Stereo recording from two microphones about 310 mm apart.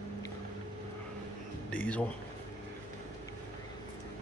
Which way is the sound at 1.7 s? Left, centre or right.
Centre.